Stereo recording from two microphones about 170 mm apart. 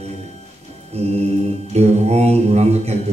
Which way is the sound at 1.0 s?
40° right (ahead or behind).